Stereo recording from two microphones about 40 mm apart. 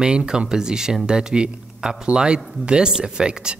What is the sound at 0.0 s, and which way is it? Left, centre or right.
Speech, centre.